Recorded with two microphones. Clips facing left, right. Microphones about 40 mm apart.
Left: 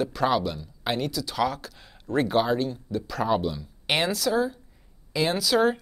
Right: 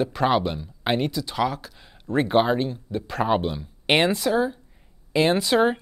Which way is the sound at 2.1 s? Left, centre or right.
Right.